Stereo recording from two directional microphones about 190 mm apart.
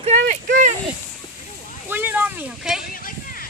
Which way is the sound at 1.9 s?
10° right (ahead or behind).